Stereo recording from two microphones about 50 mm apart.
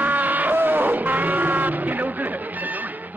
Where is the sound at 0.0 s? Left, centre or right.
Right.